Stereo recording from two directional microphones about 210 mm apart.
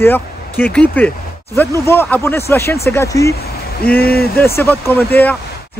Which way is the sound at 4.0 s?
45° left (ahead or behind).